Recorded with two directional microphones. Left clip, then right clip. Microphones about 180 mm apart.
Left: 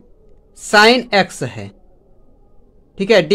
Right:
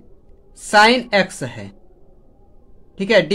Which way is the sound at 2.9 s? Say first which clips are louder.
Left 2 dB; 35° left (ahead or behind).